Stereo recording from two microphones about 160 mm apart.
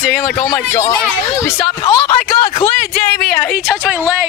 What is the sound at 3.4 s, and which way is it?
Speech, 5° left (ahead or behind).